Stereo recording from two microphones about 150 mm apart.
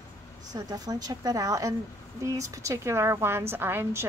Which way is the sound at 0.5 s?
25° right (ahead or behind).